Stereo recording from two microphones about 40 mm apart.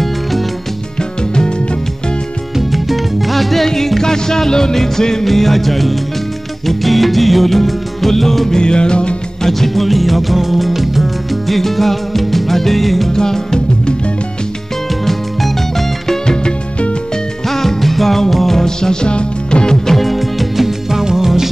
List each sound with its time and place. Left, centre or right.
2.7 s music: centre
8.5 s music: left
9.4 s music: centre
13.1 s music: centre
16.1 s music: centre
17.5 s music: centre
20.0 s music: centre